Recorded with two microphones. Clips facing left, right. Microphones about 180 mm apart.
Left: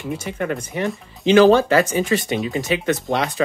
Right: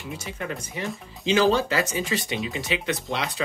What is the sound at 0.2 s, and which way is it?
Speech, 60° left (ahead or behind).